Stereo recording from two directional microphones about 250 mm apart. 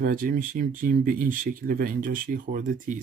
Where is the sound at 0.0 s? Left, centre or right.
Right.